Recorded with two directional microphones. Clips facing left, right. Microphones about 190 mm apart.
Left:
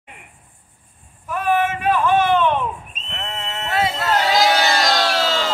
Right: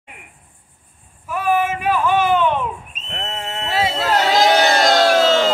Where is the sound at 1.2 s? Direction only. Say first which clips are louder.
Right 1 dB; 10° right (ahead or behind).